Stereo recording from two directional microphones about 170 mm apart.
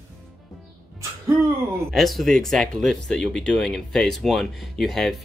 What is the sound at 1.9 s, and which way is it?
Speech, centre (ahead or behind).